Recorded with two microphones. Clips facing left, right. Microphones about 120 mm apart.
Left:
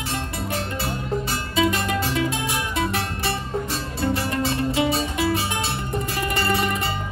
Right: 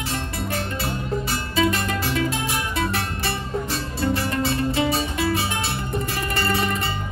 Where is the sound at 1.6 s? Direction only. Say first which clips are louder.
Left 1 dB; 15° left (ahead or behind).